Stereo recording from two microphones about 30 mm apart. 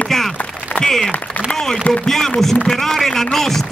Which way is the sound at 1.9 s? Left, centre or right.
Left.